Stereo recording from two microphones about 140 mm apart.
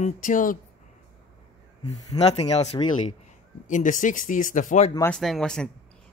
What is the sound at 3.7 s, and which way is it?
Speech, 65° left (ahead or behind).